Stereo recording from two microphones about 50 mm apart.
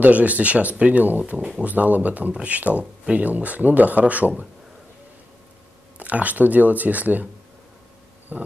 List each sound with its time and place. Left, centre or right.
0.0 s speech: right
5.9 s speech: right
8.3 s speech: right